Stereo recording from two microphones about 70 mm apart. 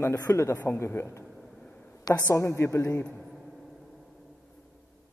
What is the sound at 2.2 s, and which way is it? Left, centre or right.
Speech, left.